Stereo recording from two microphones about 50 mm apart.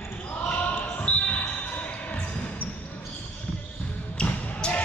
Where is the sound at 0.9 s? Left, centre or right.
Left.